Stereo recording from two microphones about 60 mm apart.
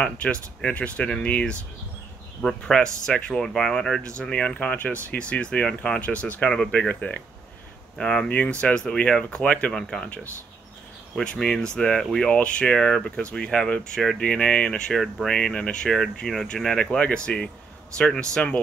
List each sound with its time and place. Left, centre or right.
0.0 s speech: centre
6.5 s speech: centre
8.0 s speech: centre
11.1 s speech: centre
12.4 s speech: centre